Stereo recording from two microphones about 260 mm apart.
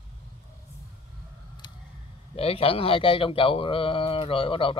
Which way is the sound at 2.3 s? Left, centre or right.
Left.